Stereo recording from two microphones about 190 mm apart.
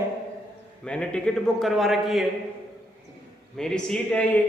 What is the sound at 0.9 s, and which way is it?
A man's voice, 5° left (ahead or behind).